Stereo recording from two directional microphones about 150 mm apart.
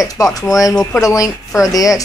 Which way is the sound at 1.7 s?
25° left (ahead or behind).